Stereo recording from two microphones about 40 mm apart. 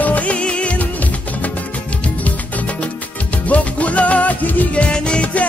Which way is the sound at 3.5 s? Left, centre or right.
Left.